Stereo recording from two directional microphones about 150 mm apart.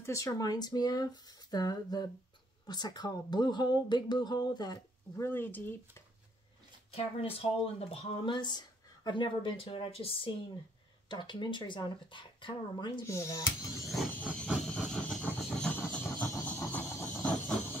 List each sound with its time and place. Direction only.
0.0 s speech: 20° left (ahead or behind)
7.0 s speech: 40° left (ahead or behind)
13.0 s speech: 20° left (ahead or behind)
14.1 s a sound: 10° left (ahead or behind)